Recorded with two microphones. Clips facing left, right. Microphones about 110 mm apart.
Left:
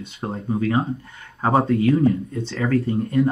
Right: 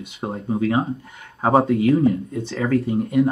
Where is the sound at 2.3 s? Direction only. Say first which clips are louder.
Right 1 dB; centre (ahead or behind).